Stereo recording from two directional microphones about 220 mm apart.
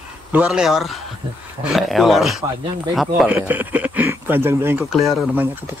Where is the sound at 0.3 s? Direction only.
5° right (ahead or behind).